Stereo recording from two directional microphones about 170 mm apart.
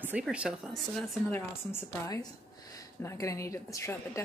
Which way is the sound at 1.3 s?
15° left (ahead or behind).